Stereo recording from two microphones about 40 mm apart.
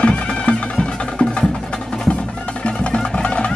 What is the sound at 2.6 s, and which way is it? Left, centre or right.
Music, left.